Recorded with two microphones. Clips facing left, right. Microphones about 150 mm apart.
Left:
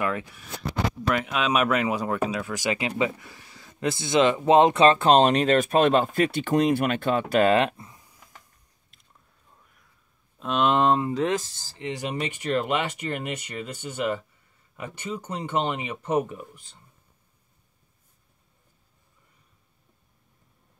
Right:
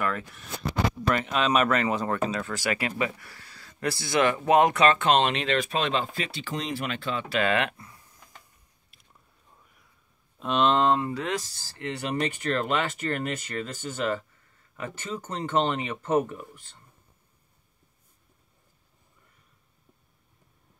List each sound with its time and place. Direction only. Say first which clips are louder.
0.0 s speech: left 2 dB; 5° left (ahead or behind); by 7.7 s 35° left (ahead or behind)
7.7 s a sound: left 3 dB; 20° left (ahead or behind)
10.4 s speech: even; centre (ahead or behind)
10.7 s speech: left 2 dB; 20° left (ahead or behind)